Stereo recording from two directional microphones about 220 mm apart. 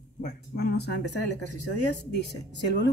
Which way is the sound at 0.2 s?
45° left (ahead or behind).